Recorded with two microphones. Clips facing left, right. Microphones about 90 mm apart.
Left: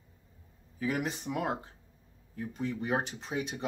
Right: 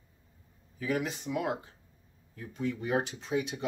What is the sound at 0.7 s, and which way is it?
Speech, 35° left (ahead or behind).